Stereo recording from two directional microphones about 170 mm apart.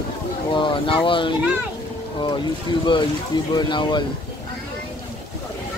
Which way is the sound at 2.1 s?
25° left (ahead or behind).